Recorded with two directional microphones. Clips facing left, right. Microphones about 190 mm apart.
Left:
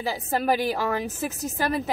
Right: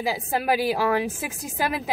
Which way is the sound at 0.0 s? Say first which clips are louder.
Even; 10° right (ahead or behind).